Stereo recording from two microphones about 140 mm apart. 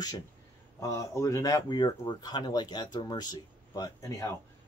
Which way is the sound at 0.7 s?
20° left (ahead or behind).